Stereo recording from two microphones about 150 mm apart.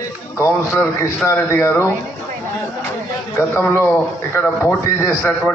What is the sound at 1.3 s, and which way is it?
Speech, 15° left (ahead or behind).